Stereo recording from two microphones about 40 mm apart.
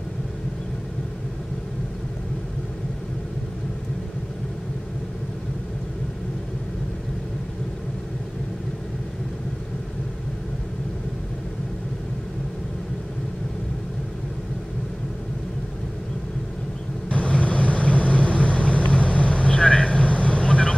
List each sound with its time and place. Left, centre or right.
17.1 s vehicle: left